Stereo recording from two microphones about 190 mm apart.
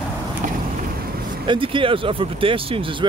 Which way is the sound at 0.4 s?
40° right (ahead or behind).